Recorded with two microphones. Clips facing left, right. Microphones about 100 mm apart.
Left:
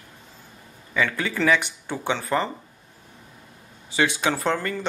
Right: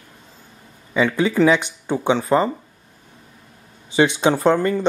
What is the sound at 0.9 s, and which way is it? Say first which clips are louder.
Speech: right 7 dB; 20° right (ahead or behind).